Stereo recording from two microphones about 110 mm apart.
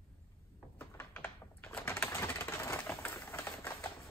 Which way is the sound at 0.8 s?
20° left (ahead or behind).